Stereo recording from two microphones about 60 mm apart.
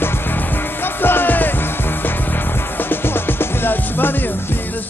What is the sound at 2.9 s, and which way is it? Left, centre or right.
Music, left.